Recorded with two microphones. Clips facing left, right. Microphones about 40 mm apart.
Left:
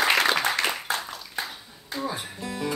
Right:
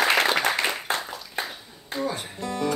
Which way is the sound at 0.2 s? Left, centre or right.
Right.